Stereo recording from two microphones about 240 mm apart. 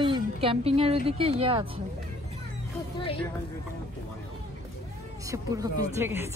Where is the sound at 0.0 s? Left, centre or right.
Right.